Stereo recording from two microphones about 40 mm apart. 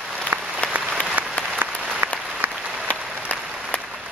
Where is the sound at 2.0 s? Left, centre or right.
Right.